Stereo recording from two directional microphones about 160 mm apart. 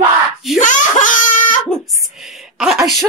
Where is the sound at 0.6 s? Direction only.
55° left (ahead or behind).